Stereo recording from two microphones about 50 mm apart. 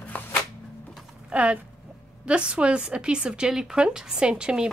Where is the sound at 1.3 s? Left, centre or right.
Right.